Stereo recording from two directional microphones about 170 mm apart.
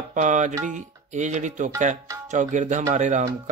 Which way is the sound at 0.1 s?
45° right (ahead or behind).